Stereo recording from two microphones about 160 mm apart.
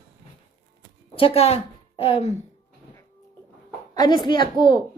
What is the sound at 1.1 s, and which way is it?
A woman's voice, 40° left (ahead or behind).